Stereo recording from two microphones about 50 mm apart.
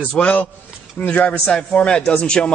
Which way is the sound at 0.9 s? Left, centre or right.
Left.